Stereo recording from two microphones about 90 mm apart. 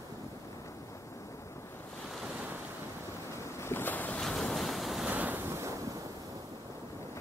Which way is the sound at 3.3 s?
30° left (ahead or behind).